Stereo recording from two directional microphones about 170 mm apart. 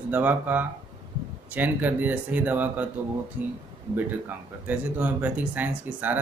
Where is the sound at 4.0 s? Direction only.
10° right (ahead or behind).